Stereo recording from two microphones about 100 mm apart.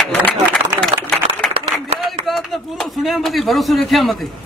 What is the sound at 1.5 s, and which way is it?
Clapping, 70° right (ahead or behind).